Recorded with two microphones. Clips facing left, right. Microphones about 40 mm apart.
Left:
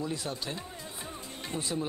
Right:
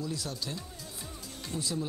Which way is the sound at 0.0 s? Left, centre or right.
Left.